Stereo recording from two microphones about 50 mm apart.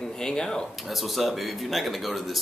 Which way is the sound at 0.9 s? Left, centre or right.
Centre.